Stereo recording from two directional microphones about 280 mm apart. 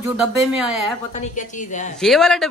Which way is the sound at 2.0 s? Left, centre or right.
Centre.